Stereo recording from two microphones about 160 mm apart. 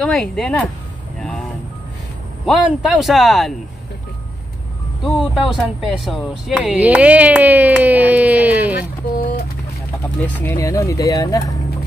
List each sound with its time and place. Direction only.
0.0 s speech: 5° left (ahead or behind)
2.4 s speech: centre (ahead or behind)
5.0 s speech: centre (ahead or behind)
10.2 s speech: 15° left (ahead or behind)